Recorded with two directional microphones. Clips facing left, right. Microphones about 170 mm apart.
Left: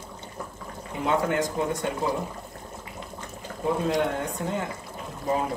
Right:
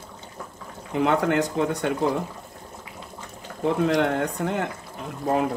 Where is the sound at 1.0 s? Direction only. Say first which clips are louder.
Right 4 dB; 70° right (ahead or behind).